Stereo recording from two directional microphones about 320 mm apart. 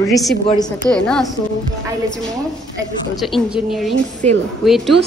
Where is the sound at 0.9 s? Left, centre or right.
Centre.